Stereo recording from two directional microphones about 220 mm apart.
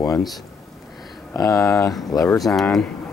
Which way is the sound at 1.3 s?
15° left (ahead or behind).